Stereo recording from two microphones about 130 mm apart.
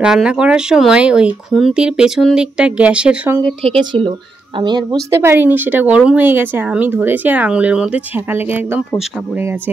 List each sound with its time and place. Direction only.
0.0 s speech: 5° right (ahead or behind)
3.6 s speech: 45° right (ahead or behind)
5.1 s speech: 20° right (ahead or behind)